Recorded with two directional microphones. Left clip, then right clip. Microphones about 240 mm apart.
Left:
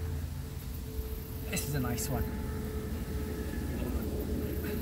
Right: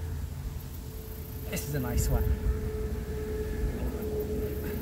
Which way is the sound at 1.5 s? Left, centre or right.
Centre.